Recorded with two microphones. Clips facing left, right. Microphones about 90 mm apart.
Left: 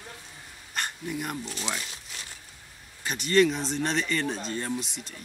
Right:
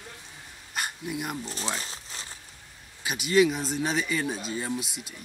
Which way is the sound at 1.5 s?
35° right (ahead or behind).